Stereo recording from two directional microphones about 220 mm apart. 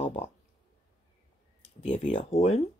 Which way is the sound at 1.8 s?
30° left (ahead or behind).